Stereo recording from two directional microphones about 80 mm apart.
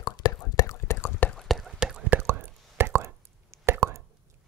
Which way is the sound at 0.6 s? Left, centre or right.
Left.